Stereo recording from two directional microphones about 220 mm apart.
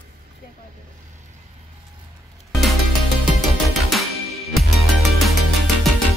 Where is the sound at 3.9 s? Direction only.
Centre (ahead or behind).